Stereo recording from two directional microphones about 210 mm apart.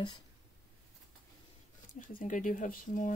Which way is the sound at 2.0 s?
40° left (ahead or behind).